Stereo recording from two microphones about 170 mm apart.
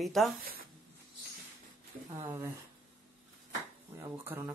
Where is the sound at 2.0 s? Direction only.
20° right (ahead or behind).